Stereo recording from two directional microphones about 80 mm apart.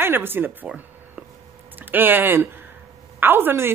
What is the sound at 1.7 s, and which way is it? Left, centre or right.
A woman's voice, right.